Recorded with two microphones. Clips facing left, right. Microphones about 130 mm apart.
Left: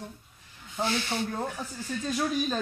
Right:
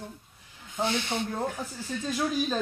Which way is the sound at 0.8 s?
20° right (ahead or behind).